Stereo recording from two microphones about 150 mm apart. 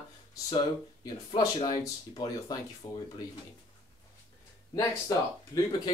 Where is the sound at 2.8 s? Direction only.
15° left (ahead or behind).